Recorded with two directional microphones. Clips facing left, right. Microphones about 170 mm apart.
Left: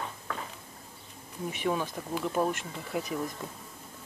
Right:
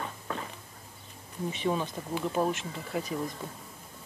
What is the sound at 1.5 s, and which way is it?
Speech, 10° left (ahead or behind).